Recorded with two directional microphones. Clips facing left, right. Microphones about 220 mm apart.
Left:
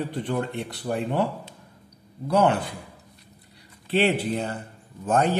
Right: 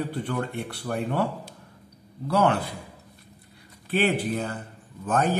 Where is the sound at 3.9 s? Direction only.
25° left (ahead or behind).